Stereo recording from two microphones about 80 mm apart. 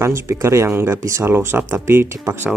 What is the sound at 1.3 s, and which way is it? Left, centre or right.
Speech, right.